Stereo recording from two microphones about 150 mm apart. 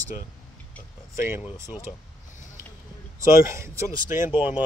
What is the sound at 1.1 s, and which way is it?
Speech, 15° right (ahead or behind).